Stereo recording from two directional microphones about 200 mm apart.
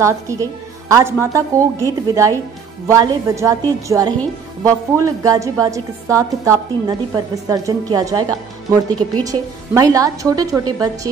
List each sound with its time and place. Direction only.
0.0 s a woman's voice: 15° right (ahead or behind)